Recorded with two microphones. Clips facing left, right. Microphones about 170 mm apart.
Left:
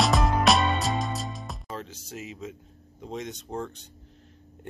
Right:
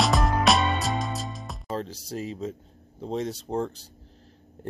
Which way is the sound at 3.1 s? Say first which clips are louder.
Right 6 dB; 30° right (ahead or behind).